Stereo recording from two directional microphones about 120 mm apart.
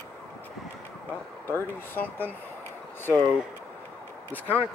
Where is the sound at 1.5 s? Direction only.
15° left (ahead or behind).